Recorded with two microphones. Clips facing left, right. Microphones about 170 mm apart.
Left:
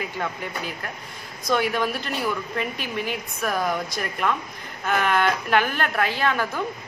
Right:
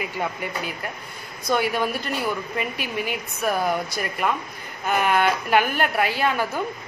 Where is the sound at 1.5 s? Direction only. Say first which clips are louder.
Even; 5° right (ahead or behind).